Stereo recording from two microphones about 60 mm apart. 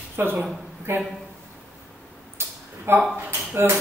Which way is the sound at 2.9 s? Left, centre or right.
Right.